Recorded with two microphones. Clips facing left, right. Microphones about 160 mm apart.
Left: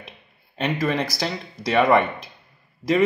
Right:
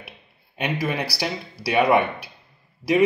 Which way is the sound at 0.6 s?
10° right (ahead or behind).